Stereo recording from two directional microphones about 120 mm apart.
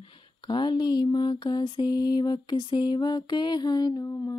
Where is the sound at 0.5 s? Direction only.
35° left (ahead or behind).